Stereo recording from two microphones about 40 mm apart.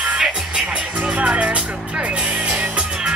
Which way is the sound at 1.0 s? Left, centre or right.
Right.